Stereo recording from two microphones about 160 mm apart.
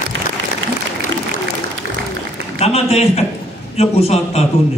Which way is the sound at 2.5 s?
40° left (ahead or behind).